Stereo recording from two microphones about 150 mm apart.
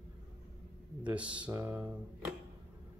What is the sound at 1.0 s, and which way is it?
Speech, 10° right (ahead or behind).